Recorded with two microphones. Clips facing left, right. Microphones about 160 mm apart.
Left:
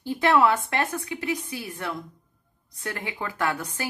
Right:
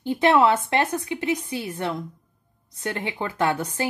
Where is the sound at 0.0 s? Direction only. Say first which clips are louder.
Right 2 dB; 20° right (ahead or behind).